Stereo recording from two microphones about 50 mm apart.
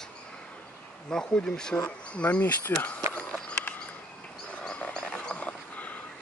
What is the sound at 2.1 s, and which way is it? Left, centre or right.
Speech, left.